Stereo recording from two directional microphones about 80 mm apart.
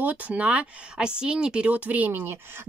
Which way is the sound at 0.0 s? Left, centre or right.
Centre.